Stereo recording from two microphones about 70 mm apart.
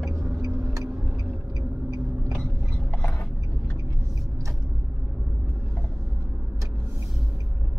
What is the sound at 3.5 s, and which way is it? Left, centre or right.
Vehicle, left.